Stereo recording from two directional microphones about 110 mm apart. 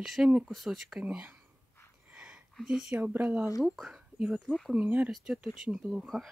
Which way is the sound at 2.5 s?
5° right (ahead or behind).